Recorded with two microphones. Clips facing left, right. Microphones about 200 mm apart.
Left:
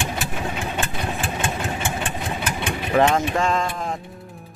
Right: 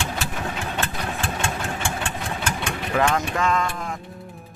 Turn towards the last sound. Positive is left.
turn(degrees=30)  # may be behind; listen again after turning